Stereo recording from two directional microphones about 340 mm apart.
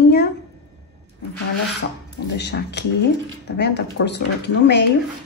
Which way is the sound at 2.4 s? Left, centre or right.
Left.